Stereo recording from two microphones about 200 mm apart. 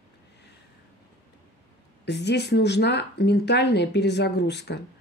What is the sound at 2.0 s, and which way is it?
A woman's voice, 60° left (ahead or behind).